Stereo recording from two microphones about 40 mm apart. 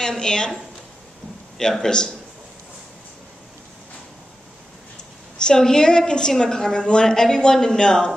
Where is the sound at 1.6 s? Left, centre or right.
Centre.